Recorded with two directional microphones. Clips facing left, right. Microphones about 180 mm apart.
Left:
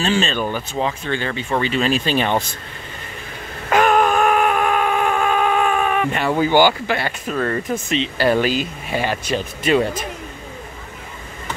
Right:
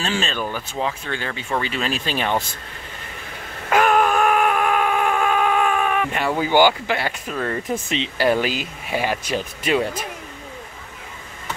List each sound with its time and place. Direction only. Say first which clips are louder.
0.0 s speech: left 5 dB; 5° right (ahead or behind)
0.4 s speech: left 4 dB; 20° left (ahead or behind)
0.7 s speech: left 3 dB; centre (ahead or behind)
3.7 s a sound: left 2 dB; 5° right (ahead or behind)
7.9 s speech: left 3 dB; 20° right (ahead or behind)
8.3 s speech: left 3 dB; 10° right (ahead or behind)